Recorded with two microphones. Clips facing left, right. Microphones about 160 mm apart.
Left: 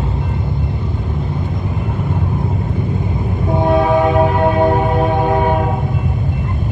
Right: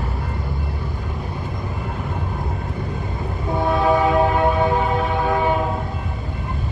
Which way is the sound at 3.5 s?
20° left (ahead or behind).